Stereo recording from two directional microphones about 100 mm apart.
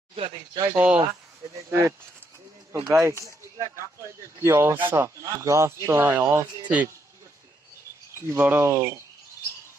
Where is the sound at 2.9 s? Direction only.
25° right (ahead or behind).